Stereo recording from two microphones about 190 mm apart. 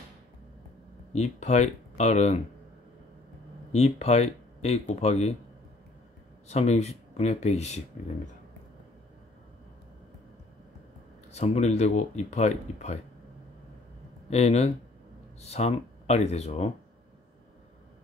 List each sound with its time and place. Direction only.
1.1 s speech: 35° left (ahead or behind)
3.7 s speech: 35° left (ahead or behind)
6.5 s speech: 35° left (ahead or behind)
11.3 s speech: 35° left (ahead or behind)
14.3 s speech: 35° left (ahead or behind)